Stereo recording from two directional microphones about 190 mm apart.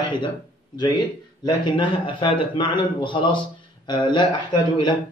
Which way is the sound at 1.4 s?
25° left (ahead or behind).